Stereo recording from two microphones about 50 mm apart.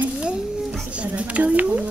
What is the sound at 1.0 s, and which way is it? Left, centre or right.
Speech, right.